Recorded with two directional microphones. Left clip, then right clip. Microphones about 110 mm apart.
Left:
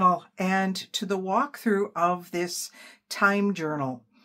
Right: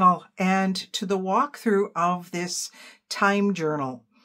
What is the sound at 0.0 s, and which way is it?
Speech, 35° right (ahead or behind).